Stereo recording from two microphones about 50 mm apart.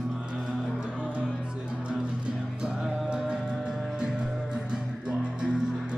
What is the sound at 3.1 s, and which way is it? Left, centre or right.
Music, centre.